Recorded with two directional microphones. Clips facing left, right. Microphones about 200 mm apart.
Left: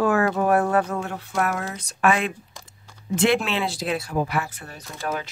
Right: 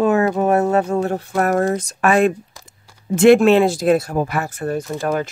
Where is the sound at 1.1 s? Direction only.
40° right (ahead or behind).